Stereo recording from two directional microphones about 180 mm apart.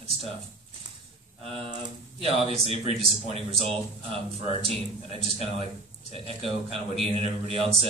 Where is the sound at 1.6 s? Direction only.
30° right (ahead or behind).